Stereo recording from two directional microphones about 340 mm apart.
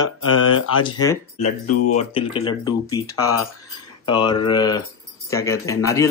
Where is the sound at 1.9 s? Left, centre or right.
Centre.